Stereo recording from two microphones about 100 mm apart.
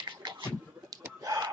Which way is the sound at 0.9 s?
35° right (ahead or behind).